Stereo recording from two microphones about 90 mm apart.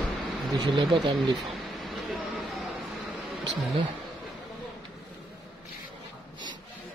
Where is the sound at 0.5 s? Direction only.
65° right (ahead or behind).